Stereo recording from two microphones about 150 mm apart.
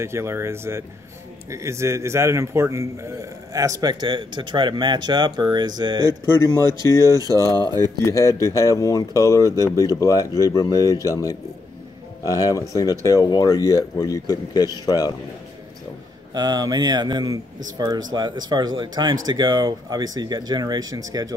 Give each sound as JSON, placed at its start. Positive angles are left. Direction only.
{"t": 0.0, "sound": "a man's voice", "side_deg": -20}
{"t": 6.3, "sound": "speech", "side_deg": 20}
{"t": 7.2, "sound": "a man's voice", "side_deg": -25}
{"t": 8.0, "sound": "speech", "side_deg": 20}
{"t": 12.4, "sound": "speech", "side_deg": 25}
{"t": 16.3, "sound": "a man's voice", "side_deg": -25}